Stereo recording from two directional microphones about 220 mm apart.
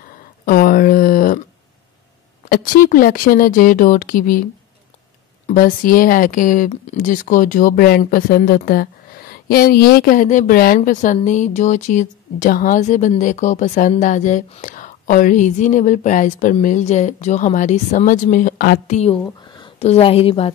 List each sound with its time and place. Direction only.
0.5 s a sound: 40° left (ahead or behind)
2.5 s speech: 40° left (ahead or behind)
5.5 s a woman's voice: 40° left (ahead or behind)